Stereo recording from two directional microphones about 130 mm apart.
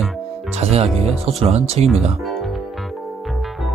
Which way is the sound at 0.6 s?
55° right (ahead or behind).